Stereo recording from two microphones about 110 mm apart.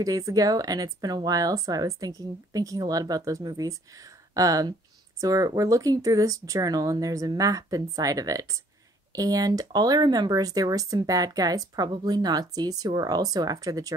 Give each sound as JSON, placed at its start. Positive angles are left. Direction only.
{"t": 0.0, "sound": "speech", "side_deg": -35}